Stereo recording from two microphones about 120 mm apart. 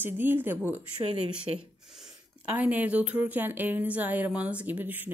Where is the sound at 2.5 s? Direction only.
15° right (ahead or behind).